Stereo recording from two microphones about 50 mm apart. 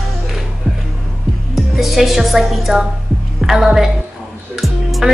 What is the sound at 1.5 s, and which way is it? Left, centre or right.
A woman's voice, centre.